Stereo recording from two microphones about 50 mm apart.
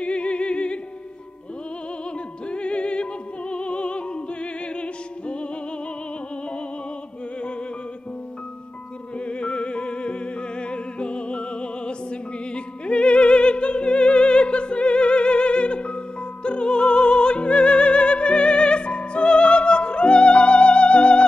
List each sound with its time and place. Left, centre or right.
0.0 s music: left
2.1 s opera: left
9.2 s music: left